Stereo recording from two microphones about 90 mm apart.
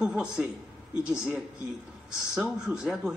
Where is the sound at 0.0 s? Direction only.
10° right (ahead or behind).